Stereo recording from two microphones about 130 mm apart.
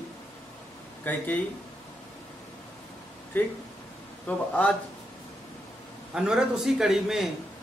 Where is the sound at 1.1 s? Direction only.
15° left (ahead or behind).